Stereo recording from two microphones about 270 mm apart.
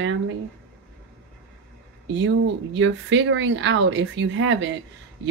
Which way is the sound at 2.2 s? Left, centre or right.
Right.